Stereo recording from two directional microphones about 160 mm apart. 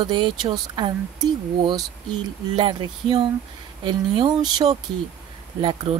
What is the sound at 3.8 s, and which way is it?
Speech, 30° right (ahead or behind).